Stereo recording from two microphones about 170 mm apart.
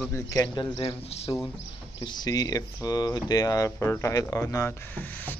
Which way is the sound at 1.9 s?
25° left (ahead or behind).